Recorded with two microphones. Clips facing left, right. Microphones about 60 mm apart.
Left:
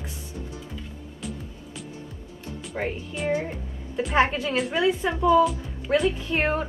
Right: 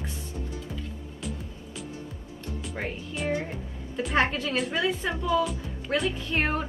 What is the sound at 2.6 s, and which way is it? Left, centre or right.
Speech, centre.